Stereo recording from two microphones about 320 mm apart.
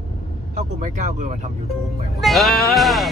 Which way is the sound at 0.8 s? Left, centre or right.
Right.